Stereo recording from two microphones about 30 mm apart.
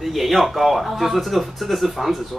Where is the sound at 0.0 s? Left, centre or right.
Centre.